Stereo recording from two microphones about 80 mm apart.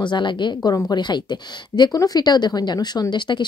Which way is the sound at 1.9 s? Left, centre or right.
Left.